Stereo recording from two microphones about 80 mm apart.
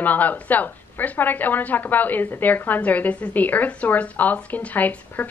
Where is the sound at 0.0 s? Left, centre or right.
Left.